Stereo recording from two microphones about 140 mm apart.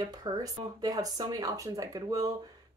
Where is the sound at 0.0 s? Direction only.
25° right (ahead or behind).